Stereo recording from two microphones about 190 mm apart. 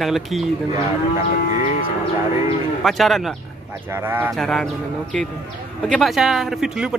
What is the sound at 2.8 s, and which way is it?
Speech, centre (ahead or behind).